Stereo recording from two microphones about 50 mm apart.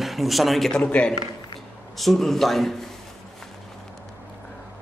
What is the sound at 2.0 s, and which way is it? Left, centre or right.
Speech, centre.